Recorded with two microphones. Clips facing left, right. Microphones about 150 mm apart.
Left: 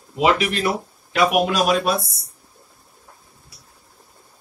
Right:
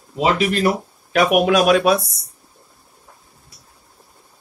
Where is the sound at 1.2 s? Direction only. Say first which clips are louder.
Right 3 dB; 60° right (ahead or behind).